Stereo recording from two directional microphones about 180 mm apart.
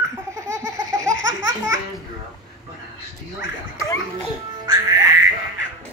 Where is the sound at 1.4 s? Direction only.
15° right (ahead or behind).